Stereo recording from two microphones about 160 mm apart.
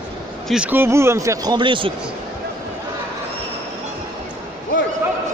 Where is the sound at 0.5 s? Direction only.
10° right (ahead or behind); by 2.0 s 30° right (ahead or behind).